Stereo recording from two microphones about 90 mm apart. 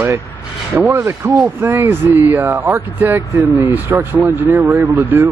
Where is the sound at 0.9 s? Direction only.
30° right (ahead or behind).